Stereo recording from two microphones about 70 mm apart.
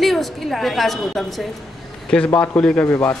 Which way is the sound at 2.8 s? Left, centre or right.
Left.